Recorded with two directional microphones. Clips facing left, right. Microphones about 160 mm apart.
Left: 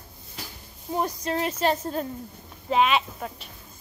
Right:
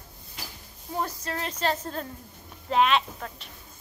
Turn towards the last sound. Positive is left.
turn(degrees=10)  # may be behind; listen again after turning